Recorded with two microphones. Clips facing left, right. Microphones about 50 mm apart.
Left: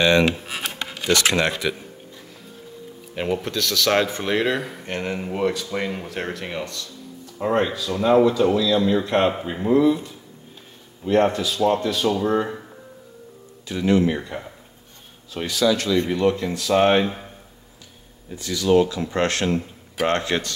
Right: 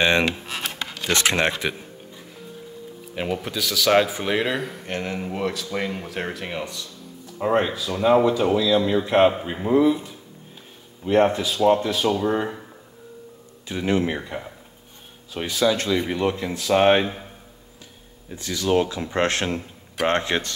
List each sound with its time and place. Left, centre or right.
0.5 s filing: centre
1.6 s speech: right
3.2 s speech: centre
13.7 s speech: right
14.1 s speech: centre
15.4 s speech: right
16.0 s speech: centre
18.3 s speech: right